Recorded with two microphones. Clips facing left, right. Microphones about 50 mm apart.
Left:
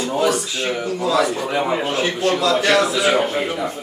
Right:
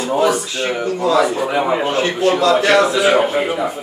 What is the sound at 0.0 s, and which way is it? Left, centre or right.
A man's voice, centre.